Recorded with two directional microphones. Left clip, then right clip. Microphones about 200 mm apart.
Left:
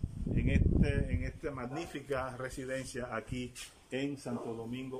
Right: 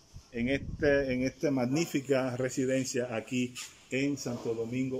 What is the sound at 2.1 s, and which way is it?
Speech, 30° right (ahead or behind).